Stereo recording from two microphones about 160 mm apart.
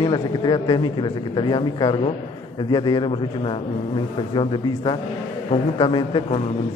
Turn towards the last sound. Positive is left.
turn(degrees=35)  # may be behind; listen again after turning